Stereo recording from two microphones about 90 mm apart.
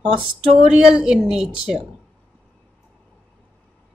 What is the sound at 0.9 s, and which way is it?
Speech, 10° right (ahead or behind).